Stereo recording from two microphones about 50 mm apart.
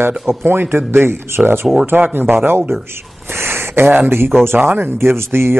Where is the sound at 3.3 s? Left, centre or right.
Right.